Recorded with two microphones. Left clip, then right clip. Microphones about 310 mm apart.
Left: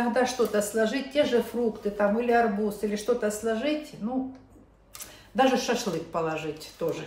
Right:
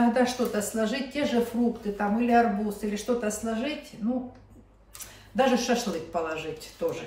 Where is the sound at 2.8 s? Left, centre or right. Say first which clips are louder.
Left 3 dB; centre.